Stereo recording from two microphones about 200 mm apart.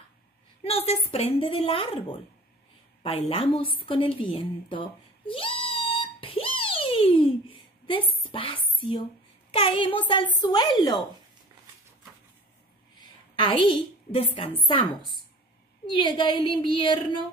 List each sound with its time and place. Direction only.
0.7 s a woman's voice: 30° left (ahead or behind)
3.8 s a sound: 25° left (ahead or behind)
9.5 s a woman's voice: 25° left (ahead or behind)
13.0 s a woman's voice: 25° left (ahead or behind)